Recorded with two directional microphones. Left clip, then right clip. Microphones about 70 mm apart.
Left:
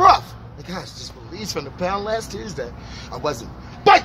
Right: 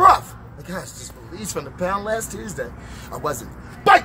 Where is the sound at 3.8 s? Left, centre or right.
Left.